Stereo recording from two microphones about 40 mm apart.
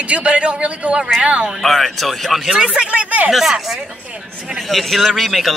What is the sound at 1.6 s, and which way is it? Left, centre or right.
Speech, centre.